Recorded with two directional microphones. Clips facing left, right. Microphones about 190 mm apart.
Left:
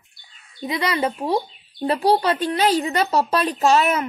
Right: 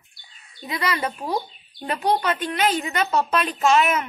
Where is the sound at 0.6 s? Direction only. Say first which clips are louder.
Left 4 dB; 25° left (ahead or behind).